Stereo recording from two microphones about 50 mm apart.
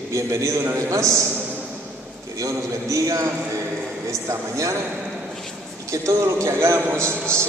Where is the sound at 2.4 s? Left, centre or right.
Right.